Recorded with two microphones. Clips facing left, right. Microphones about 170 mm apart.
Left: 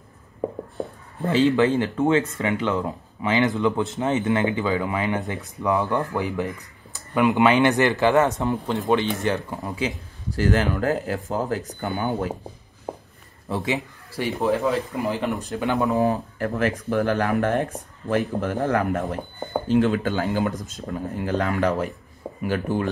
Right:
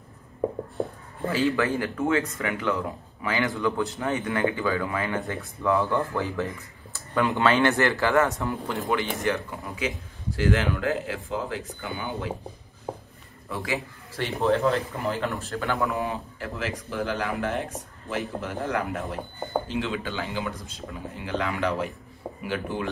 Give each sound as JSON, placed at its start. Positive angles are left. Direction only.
{"t": 1.3, "sound": "speech", "side_deg": 20}
{"t": 13.5, "sound": "speech", "side_deg": 25}
{"t": 14.1, "sound": "speech", "side_deg": 10}
{"t": 15.9, "sound": "speech", "side_deg": 40}